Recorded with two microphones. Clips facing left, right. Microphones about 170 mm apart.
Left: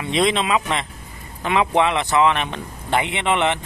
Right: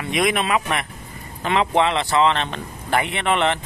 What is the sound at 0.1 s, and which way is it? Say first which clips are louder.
Speech: left 1 dB; 25° left (ahead or behind).